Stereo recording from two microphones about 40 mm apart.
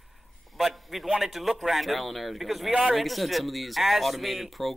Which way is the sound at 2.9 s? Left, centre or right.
Centre.